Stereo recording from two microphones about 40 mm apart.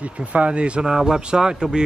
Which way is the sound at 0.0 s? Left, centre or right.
Right.